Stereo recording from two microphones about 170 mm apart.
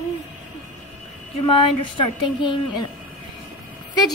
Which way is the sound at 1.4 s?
30° left (ahead or behind).